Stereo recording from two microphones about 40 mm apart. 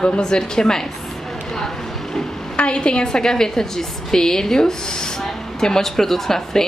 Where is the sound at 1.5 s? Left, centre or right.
Centre.